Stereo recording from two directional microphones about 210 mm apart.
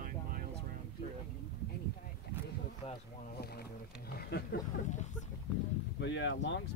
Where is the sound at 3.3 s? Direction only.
50° left (ahead or behind).